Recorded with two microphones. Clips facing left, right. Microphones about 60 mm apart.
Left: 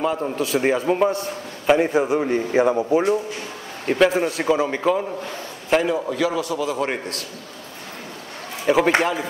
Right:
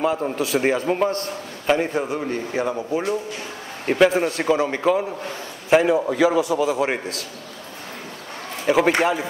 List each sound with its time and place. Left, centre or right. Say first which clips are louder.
0.0 s a man's voice: right 1 dB; centre; by 3.1 s left
3.8 s a man's voice: right 1 dB; centre
5.7 s a man's voice: right 3 dB; centre
8.6 s a man's voice: even; centre